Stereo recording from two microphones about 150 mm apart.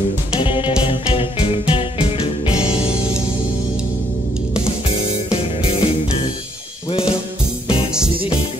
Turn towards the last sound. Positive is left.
turn(degrees=40)  # may be behind; listen again after turning